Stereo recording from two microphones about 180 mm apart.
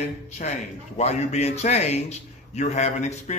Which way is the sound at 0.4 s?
40° left (ahead or behind).